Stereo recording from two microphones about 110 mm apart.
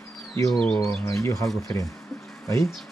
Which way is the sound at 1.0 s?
30° left (ahead or behind).